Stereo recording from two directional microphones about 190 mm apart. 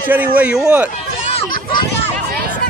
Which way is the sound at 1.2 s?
30° left (ahead or behind).